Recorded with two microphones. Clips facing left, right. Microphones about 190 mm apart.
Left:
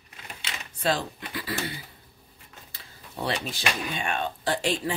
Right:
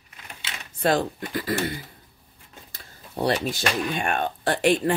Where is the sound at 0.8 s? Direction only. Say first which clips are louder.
Right 5 dB; 50° right (ahead or behind).